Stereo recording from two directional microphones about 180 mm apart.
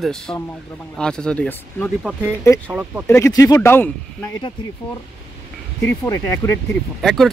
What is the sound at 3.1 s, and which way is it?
Speech, 15° left (ahead or behind).